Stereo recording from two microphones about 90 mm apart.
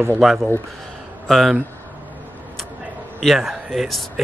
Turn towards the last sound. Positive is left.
turn(degrees=0)  # may be behind; listen again after turning